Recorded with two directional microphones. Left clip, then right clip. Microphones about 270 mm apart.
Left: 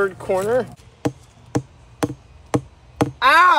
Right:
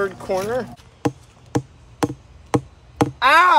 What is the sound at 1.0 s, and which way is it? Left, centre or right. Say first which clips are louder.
Chop: right 1 dB; centre.